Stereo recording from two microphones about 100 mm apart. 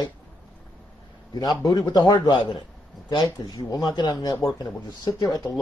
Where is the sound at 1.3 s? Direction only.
40° left (ahead or behind).